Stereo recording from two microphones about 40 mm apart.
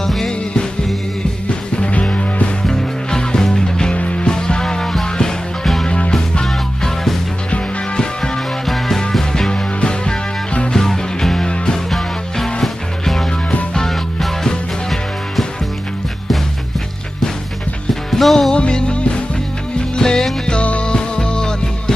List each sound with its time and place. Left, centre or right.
0.0 s music: centre
1.5 s music: left
2.6 s music: centre
3.9 s music: left
4.3 s music: centre
6.4 s music: centre
7.5 s music: left
8.6 s music: centre
18.1 s music: centre
18.5 s music: left
20.0 s music: centre
20.6 s music: left